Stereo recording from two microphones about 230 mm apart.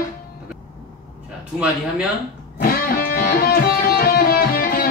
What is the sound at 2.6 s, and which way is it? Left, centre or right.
Music, left.